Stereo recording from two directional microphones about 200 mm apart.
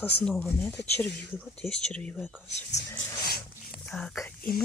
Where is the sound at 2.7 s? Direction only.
55° left (ahead or behind).